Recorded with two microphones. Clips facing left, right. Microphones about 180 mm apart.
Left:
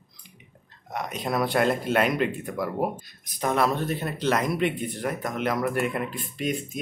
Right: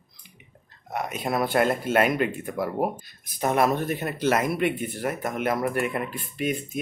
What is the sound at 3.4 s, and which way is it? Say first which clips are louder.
Speech: right 2 dB; 10° right (ahead or behind).